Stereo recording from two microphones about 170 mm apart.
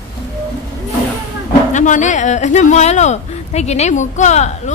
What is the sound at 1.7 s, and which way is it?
Speech, 45° left (ahead or behind).